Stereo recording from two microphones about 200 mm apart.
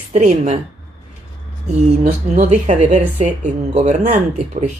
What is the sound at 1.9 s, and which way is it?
Speech, 35° right (ahead or behind).